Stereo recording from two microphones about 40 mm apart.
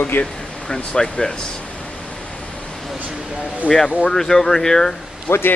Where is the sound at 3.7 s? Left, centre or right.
Centre.